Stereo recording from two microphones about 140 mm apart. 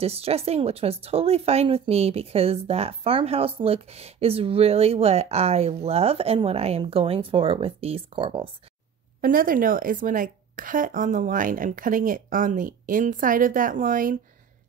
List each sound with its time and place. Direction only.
0.0 s speech: 45° right (ahead or behind)
9.2 s a woman's voice: 90° right; by 14.1 s 70° right (ahead or behind)